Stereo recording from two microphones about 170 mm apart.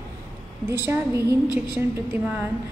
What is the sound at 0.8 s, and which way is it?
A woman's voice, 15° right (ahead or behind).